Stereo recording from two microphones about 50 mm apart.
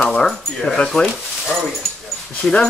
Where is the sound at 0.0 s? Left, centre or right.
Centre.